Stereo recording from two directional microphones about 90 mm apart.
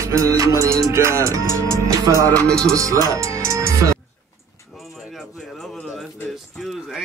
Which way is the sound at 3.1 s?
35° right (ahead or behind).